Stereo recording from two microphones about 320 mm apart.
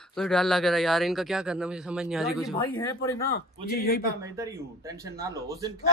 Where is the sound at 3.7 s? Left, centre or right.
Left.